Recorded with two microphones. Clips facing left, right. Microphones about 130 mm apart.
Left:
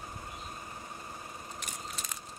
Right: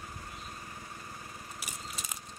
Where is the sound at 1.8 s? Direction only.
5° right (ahead or behind).